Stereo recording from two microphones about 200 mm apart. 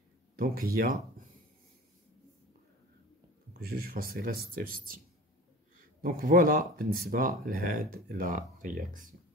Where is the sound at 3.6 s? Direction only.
50° right (ahead or behind).